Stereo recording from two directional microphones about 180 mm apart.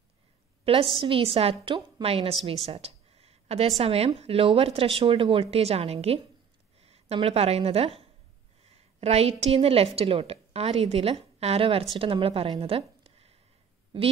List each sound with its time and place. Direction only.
0.7 s a woman's voice: 30° right (ahead or behind)
2.4 s a sound: 35° right (ahead or behind)
3.8 s a woman's voice: 35° right (ahead or behind)